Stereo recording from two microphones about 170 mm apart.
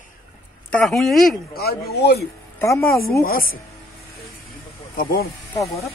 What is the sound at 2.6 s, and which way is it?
Speech, 15° left (ahead or behind).